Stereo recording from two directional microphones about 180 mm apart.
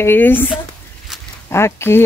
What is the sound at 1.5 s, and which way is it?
Speech, 15° left (ahead or behind).